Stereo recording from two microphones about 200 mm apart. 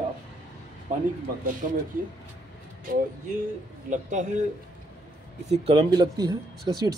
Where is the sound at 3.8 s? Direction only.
40° right (ahead or behind).